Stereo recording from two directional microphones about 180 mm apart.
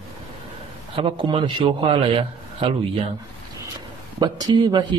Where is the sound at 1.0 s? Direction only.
30° right (ahead or behind).